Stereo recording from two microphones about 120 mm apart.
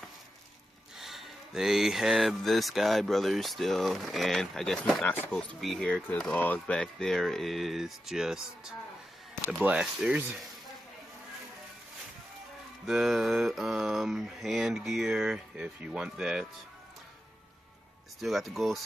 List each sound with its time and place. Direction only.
0.9 s speech: centre (ahead or behind)
12.8 s speech: 5° right (ahead or behind)
18.2 s speech: centre (ahead or behind)